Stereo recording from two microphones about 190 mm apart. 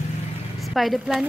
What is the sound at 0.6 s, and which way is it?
Speech, centre (ahead or behind).